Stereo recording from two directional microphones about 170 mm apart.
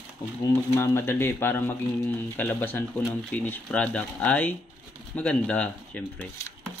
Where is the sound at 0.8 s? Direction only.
15° left (ahead or behind).